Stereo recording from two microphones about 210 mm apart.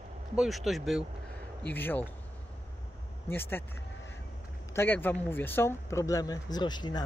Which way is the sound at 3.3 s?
10° left (ahead or behind).